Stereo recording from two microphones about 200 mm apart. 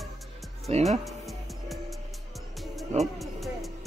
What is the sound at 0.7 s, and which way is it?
Speech, 30° right (ahead or behind).